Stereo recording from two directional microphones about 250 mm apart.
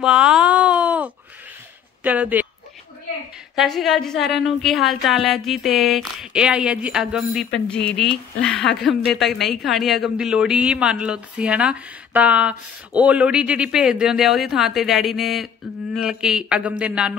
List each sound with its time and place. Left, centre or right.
0.0 s a sound: centre
2.0 s speech: centre
3.5 s a woman's voice: centre